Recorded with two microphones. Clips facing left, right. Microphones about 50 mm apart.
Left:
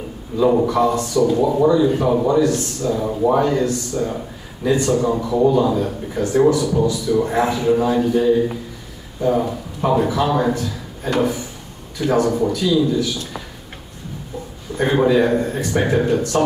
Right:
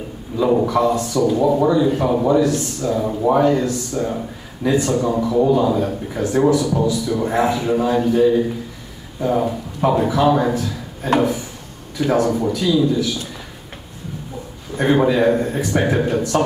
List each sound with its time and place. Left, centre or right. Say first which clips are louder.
0.4 s a man's voice: left 1 dB; centre
14.8 s a man's voice: even; centre